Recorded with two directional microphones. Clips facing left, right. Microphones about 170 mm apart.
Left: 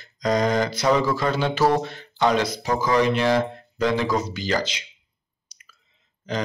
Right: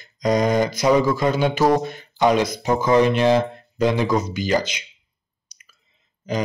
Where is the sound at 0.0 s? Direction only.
15° right (ahead or behind).